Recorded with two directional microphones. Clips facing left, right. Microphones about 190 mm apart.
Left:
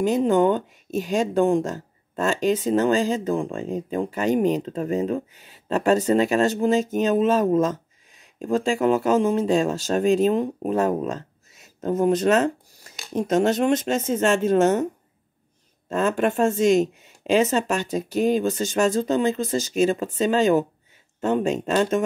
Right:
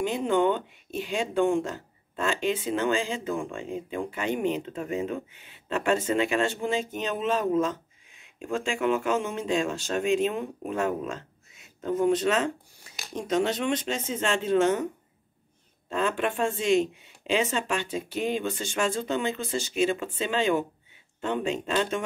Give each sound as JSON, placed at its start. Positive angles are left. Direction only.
{"t": 0.0, "sound": "speech", "side_deg": 40}
{"t": 15.9, "sound": "speech", "side_deg": 45}